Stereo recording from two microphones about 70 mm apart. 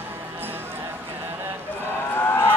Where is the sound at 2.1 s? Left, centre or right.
Left.